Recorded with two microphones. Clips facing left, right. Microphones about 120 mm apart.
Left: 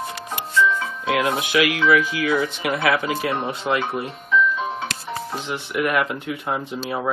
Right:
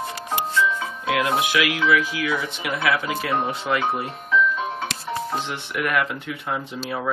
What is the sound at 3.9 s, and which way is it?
Music, centre (ahead or behind).